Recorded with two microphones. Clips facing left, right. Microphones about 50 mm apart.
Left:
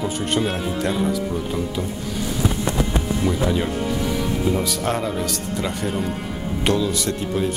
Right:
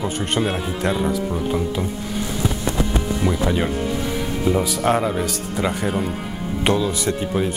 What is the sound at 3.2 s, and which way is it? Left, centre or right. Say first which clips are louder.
Speech: right 1 dB; centre.